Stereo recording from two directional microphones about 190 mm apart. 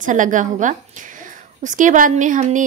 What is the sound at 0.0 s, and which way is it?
A woman's voice, 40° right (ahead or behind).